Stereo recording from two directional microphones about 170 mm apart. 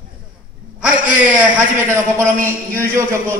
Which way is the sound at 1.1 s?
10° right (ahead or behind).